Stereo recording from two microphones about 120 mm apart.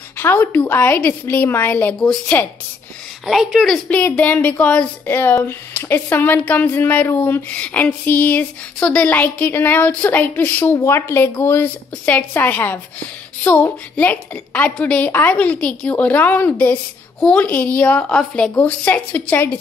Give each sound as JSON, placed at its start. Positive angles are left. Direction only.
{"t": 0.2, "sound": "a woman's voice", "side_deg": 15}
{"t": 3.3, "sound": "a woman's voice", "side_deg": 0}
{"t": 3.9, "sound": "a woman's voice", "side_deg": 10}